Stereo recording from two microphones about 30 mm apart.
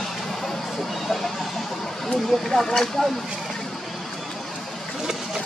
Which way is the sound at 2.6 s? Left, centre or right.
Centre.